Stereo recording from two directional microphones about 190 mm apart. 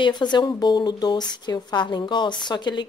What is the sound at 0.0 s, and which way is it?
Speech, 25° left (ahead or behind).